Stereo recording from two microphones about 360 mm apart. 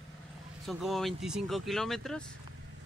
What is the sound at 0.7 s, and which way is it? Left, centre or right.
Speech, centre.